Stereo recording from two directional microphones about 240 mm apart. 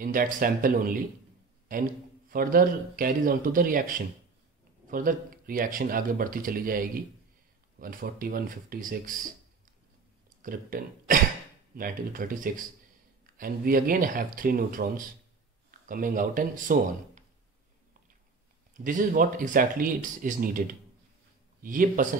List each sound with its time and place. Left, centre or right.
0.0 s speech: right
10.4 s speech: right
18.7 s speech: right